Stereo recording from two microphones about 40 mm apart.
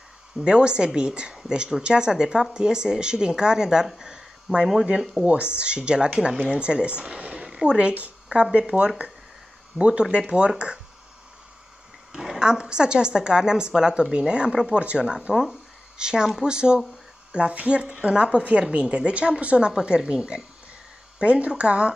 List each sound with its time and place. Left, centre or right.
0.4 s a woman's voice: right
4.0 s a sound: right
5.2 s a woman's voice: right
12.1 s a sound: centre
12.4 s a woman's voice: centre
21.2 s a woman's voice: right